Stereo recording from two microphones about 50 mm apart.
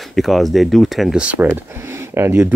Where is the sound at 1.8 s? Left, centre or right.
Right.